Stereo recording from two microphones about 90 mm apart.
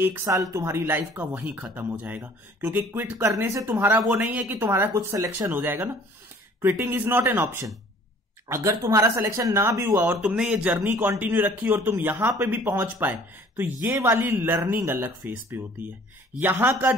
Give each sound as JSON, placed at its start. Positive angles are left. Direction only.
{"t": 0.2, "sound": "speech", "side_deg": -40}
{"t": 3.7, "sound": "speech", "side_deg": -20}
{"t": 5.5, "sound": "speech", "side_deg": -20}
{"t": 6.9, "sound": "speech", "side_deg": -25}
{"t": 10.3, "sound": "speech", "side_deg": -10}
{"t": 10.8, "sound": "speech", "side_deg": -20}